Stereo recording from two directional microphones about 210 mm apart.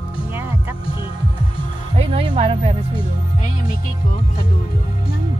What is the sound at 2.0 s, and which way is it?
Music, 25° right (ahead or behind).